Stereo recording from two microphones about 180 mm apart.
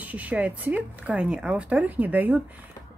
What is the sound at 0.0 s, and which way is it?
Speech, 10° right (ahead or behind).